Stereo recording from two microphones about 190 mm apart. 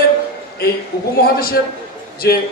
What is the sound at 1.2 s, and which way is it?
A man's voice, 55° left (ahead or behind).